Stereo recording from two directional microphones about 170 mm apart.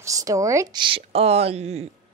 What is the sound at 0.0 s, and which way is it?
A woman's voice, 20° right (ahead or behind).